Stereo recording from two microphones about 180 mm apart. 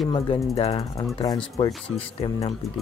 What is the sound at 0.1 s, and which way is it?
Speech, 25° left (ahead or behind).